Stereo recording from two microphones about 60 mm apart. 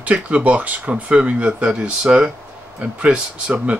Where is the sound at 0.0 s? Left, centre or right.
Right.